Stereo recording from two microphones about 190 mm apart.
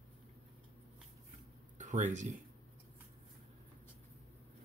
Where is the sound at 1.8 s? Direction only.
40° right (ahead or behind).